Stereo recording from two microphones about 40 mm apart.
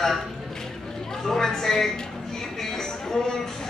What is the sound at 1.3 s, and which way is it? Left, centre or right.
Speech, centre.